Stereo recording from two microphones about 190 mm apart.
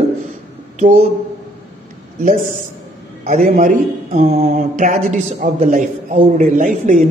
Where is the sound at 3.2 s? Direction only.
45° right (ahead or behind).